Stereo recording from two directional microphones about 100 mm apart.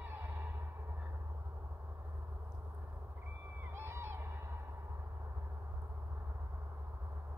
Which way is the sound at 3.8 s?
25° right (ahead or behind).